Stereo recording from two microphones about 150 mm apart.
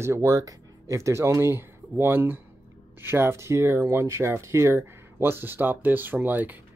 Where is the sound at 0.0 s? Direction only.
20° right (ahead or behind).